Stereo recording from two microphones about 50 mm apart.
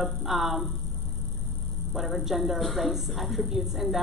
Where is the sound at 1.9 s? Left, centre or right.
Centre.